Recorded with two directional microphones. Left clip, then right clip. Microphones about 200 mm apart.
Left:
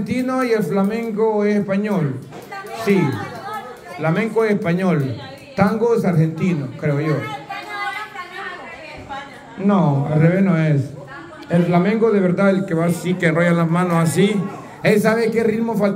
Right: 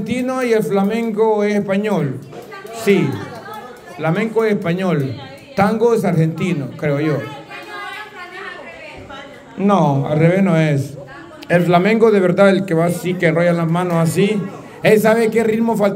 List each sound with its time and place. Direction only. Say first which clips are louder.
0.0 s speech: right 1 dB; 15° right (ahead or behind)
4.0 s a man's voice: right 1 dB; 15° right (ahead or behind)
5.6 s speech: right 3 dB; 25° right (ahead or behind)
9.6 s a man's voice: right 4 dB; 35° right (ahead or behind)
12.8 s a man's voice: right 3 dB; 15° right (ahead or behind)